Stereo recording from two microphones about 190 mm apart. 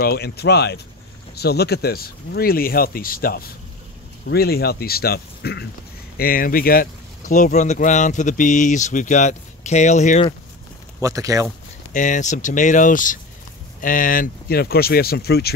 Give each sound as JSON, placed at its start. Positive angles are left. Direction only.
{"t": 0.0, "sound": "speech", "side_deg": 55}
{"t": 11.0, "sound": "speech", "side_deg": -15}
{"t": 11.9, "sound": "speech", "side_deg": 40}